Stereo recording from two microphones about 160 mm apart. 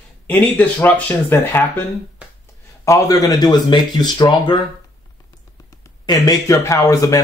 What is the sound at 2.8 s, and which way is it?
Speech, 20° left (ahead or behind).